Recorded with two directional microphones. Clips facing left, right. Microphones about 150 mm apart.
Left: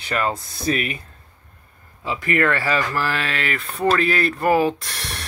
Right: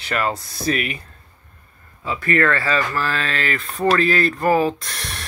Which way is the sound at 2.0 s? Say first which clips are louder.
Right 1 dB; 15° left (ahead or behind).